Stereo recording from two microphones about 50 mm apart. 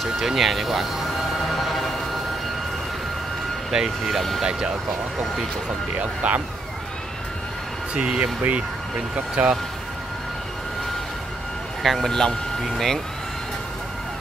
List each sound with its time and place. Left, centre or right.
0.0 s speech: centre
1.5 s music: centre
3.7 s speech: centre
4.4 s speech: centre
5.9 s speech: right
7.9 s speech: right
11.8 s speech: centre